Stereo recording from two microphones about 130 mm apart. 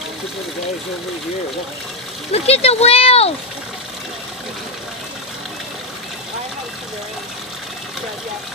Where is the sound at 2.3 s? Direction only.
50° left (ahead or behind).